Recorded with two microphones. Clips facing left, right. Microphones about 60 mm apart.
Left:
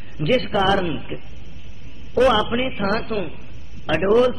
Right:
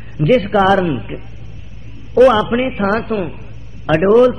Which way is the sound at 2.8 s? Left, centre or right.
Right.